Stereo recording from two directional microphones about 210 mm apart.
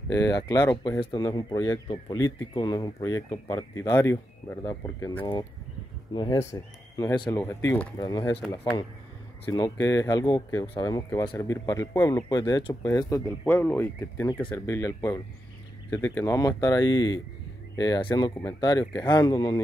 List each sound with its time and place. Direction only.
0.1 s speech: 20° left (ahead or behind)
9.5 s speech: 15° left (ahead or behind)